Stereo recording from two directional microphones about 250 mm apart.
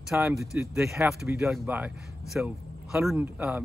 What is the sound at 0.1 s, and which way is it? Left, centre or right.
Speech, centre.